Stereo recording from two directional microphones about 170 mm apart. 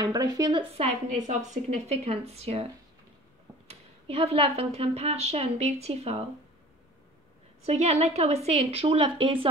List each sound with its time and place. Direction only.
0.0 s a woman's voice: 20° right (ahead or behind); by 2.6 s 35° right (ahead or behind)
3.6 s a woman's voice: 35° right (ahead or behind)
7.6 s a woman's voice: 40° right (ahead or behind)